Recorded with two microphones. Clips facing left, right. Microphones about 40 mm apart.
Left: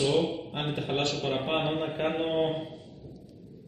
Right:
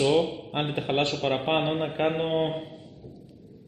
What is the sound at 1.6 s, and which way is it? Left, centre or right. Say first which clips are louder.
Speech: right 3 dB; centre.